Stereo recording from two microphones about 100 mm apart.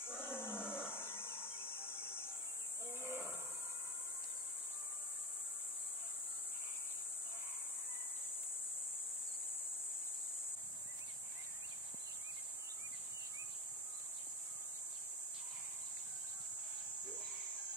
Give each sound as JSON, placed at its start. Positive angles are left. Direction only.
{"t": 0.2, "sound": "roar", "side_deg": 25}
{"t": 0.7, "sound": "a sound", "side_deg": 20}
{"t": 3.0, "sound": "hiss", "side_deg": 25}